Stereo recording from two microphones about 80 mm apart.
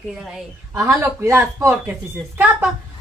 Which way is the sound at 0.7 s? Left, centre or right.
Right.